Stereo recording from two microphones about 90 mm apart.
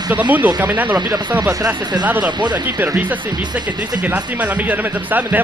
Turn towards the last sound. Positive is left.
turn(degrees=-20)  # may be behind; listen again after turning